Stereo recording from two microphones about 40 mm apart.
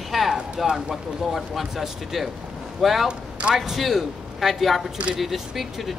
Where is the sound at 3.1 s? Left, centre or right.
Right.